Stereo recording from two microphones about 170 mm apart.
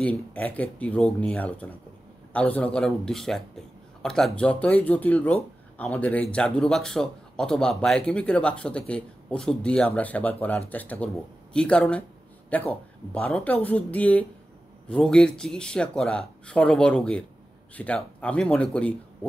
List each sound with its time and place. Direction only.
0.0 s a man's voice: 10° left (ahead or behind)